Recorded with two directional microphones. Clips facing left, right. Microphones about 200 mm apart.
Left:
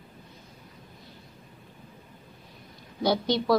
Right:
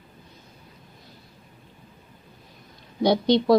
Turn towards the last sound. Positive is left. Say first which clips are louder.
# right 5 dB
turn(degrees=-20)  # may be behind; listen again after turning